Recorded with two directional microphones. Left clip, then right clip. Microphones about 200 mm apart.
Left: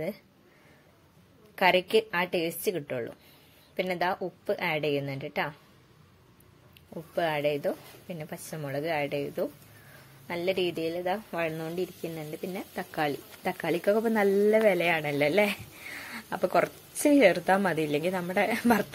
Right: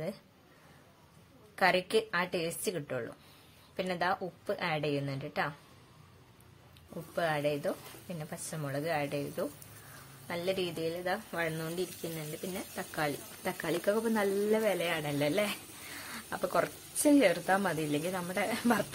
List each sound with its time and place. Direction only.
1.5 s speech: 15° left (ahead or behind)
7.2 s speech: 15° left (ahead or behind)